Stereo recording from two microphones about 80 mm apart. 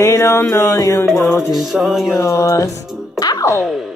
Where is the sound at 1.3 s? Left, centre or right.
Centre.